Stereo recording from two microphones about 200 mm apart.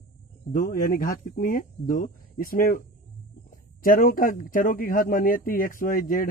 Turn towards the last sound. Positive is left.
turn(degrees=45)  # may be behind; listen again after turning